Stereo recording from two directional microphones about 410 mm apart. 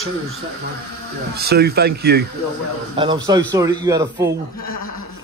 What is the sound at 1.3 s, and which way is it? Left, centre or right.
Speech, right.